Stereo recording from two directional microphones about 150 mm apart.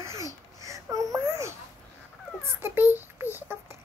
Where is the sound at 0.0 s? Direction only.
20° right (ahead or behind).